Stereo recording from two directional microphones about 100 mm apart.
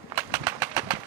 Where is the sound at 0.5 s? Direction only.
15° right (ahead or behind).